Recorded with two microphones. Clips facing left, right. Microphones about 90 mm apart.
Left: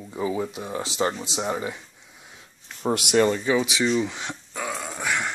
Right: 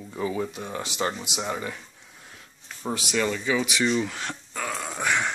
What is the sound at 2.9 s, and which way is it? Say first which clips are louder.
Speech: left 6 dB; 65° left (ahead or behind).